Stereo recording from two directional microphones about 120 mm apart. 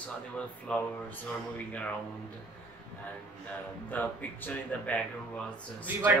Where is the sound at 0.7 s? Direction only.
5° left (ahead or behind).